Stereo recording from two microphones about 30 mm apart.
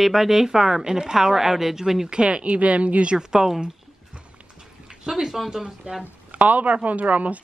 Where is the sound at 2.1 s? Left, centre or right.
Right.